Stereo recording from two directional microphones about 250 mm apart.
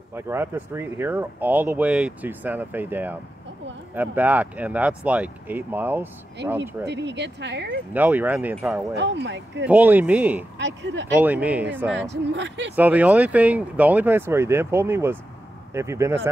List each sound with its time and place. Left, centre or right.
0.1 s speech: centre
6.9 s a woman's voice: right
7.9 s speech: centre
8.9 s a woman's voice: right
9.7 s speech: centre
10.6 s a woman's voice: right
11.1 s speech: centre
12.3 s a woman's voice: right
12.7 s speech: centre